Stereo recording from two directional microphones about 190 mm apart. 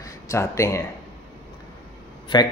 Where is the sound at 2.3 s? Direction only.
25° left (ahead or behind).